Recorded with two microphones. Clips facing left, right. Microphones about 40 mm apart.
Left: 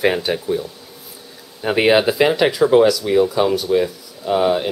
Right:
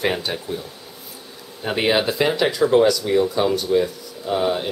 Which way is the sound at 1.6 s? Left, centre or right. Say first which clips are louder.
Left 5 dB; centre.